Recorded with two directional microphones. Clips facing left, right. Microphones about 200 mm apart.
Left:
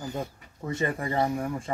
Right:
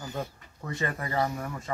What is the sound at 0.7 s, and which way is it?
Speech, 25° left (ahead or behind).